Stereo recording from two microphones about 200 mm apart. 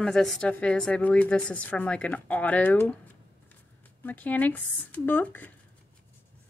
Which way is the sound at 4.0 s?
10° left (ahead or behind).